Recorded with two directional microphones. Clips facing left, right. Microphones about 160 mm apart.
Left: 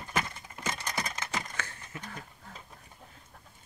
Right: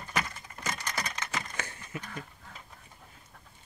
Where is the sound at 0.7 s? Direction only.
25° left (ahead or behind).